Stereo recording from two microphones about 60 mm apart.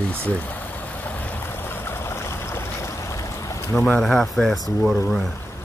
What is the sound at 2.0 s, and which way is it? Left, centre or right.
Stream, left.